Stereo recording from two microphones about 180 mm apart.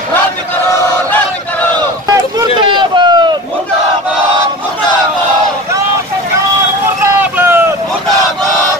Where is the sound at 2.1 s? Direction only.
25° right (ahead or behind).